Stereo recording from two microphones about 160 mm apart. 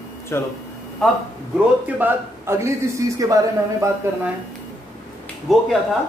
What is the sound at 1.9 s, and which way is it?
A man's voice, 15° right (ahead or behind).